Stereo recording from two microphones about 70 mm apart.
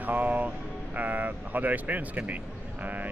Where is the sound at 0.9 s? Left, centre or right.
Right.